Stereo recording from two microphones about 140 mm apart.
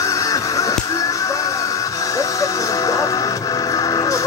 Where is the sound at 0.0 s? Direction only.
25° left (ahead or behind).